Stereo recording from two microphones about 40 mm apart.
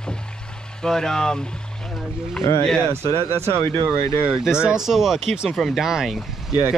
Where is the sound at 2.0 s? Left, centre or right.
Centre.